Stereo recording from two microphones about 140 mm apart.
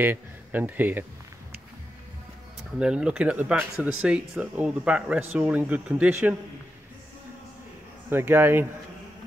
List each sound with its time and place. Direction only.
0.0 s a man's voice: 15° right (ahead or behind)
2.8 s speech: 5° right (ahead or behind)
8.1 s speech: 15° right (ahead or behind)